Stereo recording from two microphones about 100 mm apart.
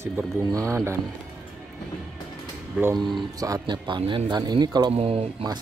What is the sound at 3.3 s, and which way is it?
Speech, 35° right (ahead or behind).